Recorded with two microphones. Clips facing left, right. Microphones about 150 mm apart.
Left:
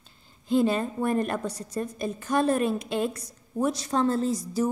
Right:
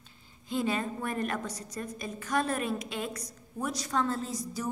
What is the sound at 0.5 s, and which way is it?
A woman's voice, 35° left (ahead or behind).